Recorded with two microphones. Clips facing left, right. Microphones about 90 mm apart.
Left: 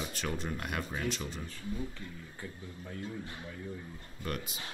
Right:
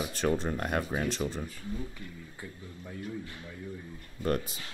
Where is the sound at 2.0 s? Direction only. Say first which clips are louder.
Even; 25° left (ahead or behind).